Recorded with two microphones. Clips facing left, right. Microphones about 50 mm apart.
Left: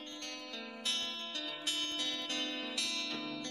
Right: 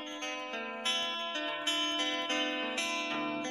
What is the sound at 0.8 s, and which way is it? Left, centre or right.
Music, right.